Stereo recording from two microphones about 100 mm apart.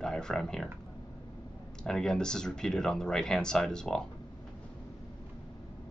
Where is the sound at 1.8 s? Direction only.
5° left (ahead or behind).